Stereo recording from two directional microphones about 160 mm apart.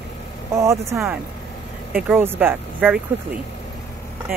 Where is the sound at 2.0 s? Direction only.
15° right (ahead or behind).